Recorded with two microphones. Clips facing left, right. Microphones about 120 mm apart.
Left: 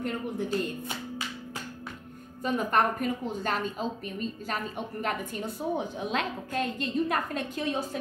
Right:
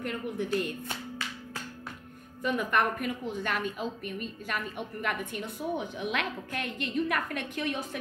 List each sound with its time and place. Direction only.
0.0 s a woman's voice: 30° left (ahead or behind)
2.4 s a woman's voice: 35° left (ahead or behind)